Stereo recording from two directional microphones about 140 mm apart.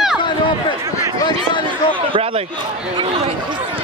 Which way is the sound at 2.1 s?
40° right (ahead or behind).